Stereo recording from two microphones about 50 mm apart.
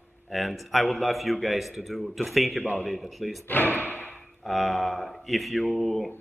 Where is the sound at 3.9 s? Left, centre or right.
Left.